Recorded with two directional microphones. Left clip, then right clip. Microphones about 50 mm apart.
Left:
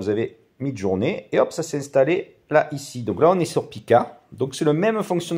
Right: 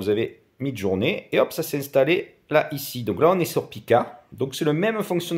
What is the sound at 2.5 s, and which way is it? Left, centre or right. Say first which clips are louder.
Speech: left 2 dB; centre.